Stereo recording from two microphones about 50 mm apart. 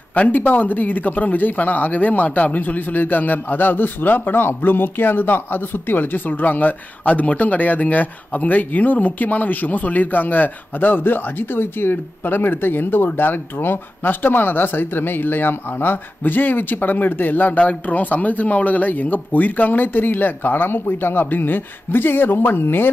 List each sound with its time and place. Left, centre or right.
0.1 s speech: left